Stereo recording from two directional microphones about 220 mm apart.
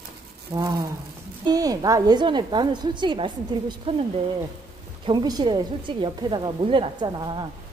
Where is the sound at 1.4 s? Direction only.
15° right (ahead or behind).